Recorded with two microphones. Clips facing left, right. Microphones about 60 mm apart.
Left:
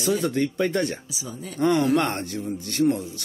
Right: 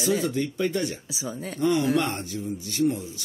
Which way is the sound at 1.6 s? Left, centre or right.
Left.